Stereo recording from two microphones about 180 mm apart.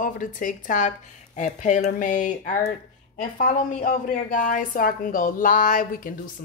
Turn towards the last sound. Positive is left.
turn(degrees=50)  # may be behind; listen again after turning